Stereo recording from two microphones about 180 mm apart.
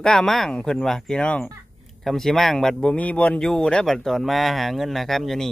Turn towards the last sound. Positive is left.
turn(degrees=0)  # may be behind; listen again after turning